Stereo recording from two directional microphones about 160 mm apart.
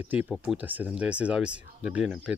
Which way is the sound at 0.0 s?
10° right (ahead or behind).